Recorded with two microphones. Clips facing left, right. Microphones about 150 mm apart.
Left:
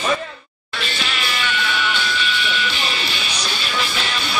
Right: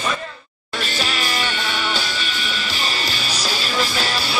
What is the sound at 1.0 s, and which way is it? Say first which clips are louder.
Music: right 3 dB; 40° right (ahead or behind).